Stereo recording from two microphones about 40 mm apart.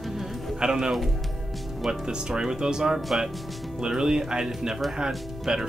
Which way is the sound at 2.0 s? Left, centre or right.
Centre.